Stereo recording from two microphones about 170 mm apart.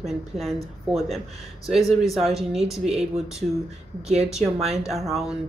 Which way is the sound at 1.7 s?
Centre (ahead or behind).